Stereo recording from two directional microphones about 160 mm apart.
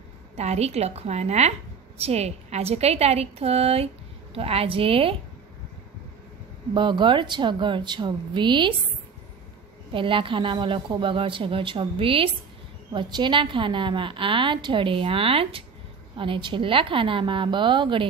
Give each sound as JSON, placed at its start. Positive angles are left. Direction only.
{"t": 0.4, "sound": "a woman's voice", "side_deg": -40}
{"t": 6.7, "sound": "speech", "side_deg": -30}
{"t": 9.9, "sound": "a woman's voice", "side_deg": -30}